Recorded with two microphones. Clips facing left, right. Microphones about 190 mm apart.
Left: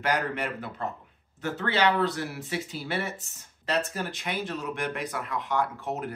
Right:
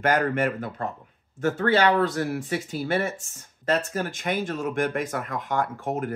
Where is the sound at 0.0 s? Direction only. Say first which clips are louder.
Right 6 dB; 50° right (ahead or behind).